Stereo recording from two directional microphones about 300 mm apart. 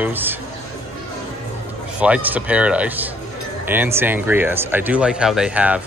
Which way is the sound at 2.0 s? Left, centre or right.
Centre.